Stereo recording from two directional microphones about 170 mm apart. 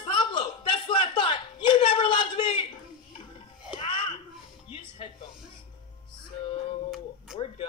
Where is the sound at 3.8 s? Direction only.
30° left (ahead or behind).